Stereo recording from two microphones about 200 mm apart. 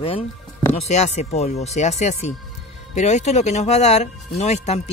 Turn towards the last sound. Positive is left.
turn(degrees=35)  # may be behind; listen again after turning